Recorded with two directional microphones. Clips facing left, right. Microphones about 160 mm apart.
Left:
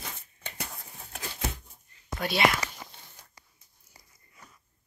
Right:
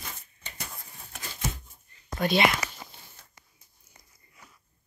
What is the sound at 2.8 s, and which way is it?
Walk, 15° right (ahead or behind).